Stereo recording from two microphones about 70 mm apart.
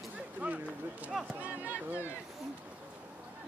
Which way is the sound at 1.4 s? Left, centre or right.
Right.